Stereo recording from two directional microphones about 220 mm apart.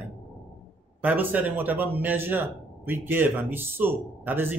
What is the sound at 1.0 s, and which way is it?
A man's voice, 10° right (ahead or behind).